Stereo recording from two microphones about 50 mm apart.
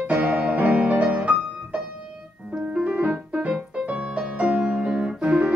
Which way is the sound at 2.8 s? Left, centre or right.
Right.